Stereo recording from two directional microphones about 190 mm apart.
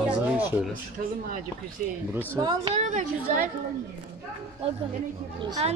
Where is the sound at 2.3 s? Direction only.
20° right (ahead or behind).